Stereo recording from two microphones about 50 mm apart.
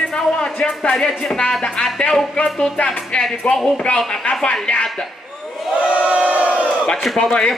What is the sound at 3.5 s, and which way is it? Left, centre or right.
Speech, centre.